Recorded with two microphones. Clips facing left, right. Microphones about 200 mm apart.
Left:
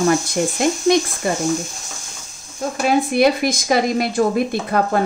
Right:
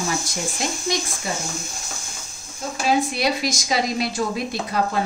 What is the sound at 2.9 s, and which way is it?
Speech, 55° left (ahead or behind).